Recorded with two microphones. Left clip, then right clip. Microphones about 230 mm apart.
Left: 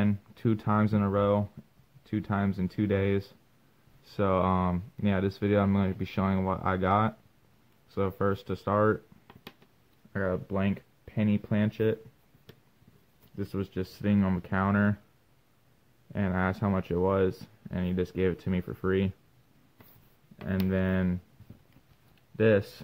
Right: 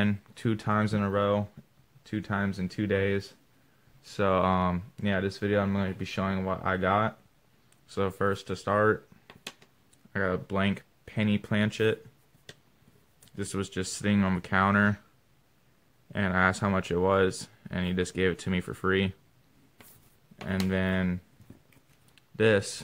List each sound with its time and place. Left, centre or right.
0.0 s speech: centre
13.4 s speech: centre
16.1 s speech: centre
20.4 s speech: centre
22.1 s a sound: centre